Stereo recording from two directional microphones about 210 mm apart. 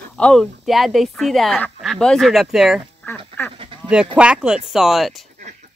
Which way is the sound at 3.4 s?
10° left (ahead or behind).